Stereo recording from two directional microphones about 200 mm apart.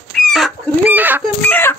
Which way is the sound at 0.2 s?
Centre (ahead or behind).